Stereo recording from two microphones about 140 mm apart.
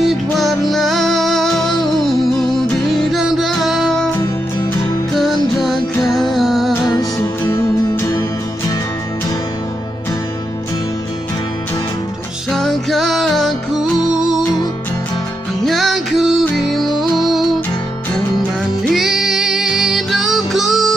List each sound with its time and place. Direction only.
0.0 s music: centre (ahead or behind)
5.1 s music: centre (ahead or behind)
7.0 s music: 20° left (ahead or behind)
12.4 s music: centre (ahead or behind)
15.6 s music: centre (ahead or behind)
18.9 s music: centre (ahead or behind)